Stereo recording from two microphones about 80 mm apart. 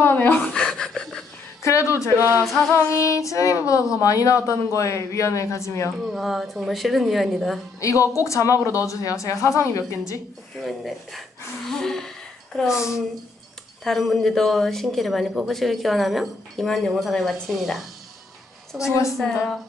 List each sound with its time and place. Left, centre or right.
0.0 s a sound: left
0.5 s a sound: centre
1.6 s a woman's voice: left
2.1 s a capella: right
2.9 s a woman's voice: left
6.0 s speech: centre
7.8 s a woman's voice: left
10.6 s speech: centre
13.8 s speech: centre